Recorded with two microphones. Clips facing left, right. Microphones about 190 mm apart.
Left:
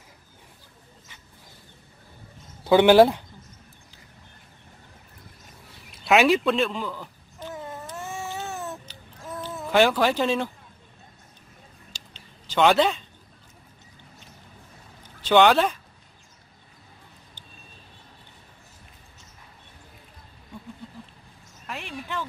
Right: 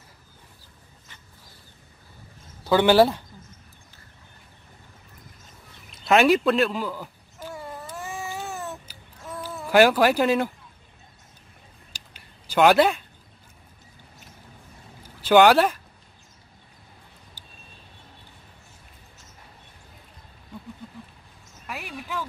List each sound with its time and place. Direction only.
2.7 s speech: 15° left (ahead or behind)
6.0 s babbling: centre (ahead or behind)
8.1 s baby cry: centre (ahead or behind)
9.6 s speech: 5° right (ahead or behind)
12.5 s speech: 5° right (ahead or behind)
15.0 s speech: 5° right (ahead or behind)
21.6 s a sound: 5° right (ahead or behind)